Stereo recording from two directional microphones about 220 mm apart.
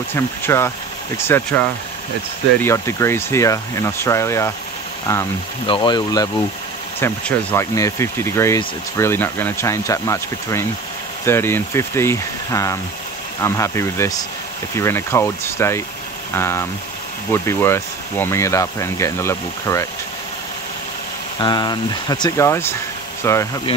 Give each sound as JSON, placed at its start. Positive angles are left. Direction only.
{"t": 0.1, "sound": "speech", "side_deg": 10}
{"t": 5.7, "sound": "speech", "side_deg": 20}
{"t": 21.4, "sound": "speech", "side_deg": 20}